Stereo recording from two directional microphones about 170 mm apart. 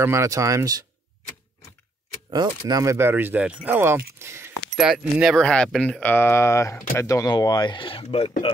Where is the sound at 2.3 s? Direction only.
20° right (ahead or behind).